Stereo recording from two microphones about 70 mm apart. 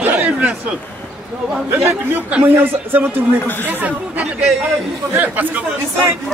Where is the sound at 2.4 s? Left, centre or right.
Right.